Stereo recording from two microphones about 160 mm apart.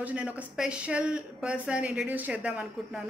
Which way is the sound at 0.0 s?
5° right (ahead or behind).